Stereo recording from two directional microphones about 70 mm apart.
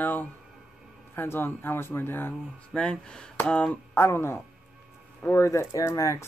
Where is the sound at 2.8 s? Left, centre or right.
Centre.